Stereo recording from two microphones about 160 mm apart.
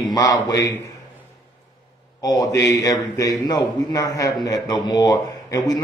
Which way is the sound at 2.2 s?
25° left (ahead or behind).